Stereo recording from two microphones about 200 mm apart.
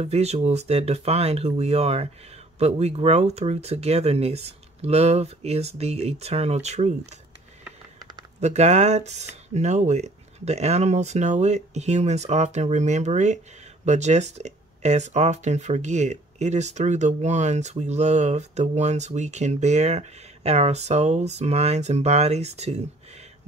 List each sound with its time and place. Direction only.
0.0 s speech: 30° right (ahead or behind)
8.4 s speech: 35° right (ahead or behind)